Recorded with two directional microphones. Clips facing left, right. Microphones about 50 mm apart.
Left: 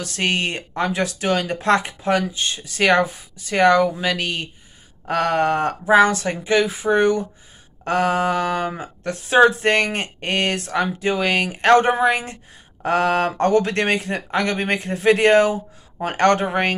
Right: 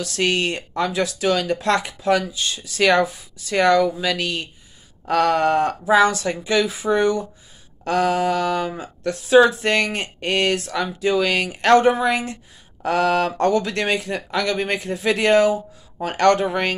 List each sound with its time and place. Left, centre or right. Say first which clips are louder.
0.0 s speech: right 1 dB; left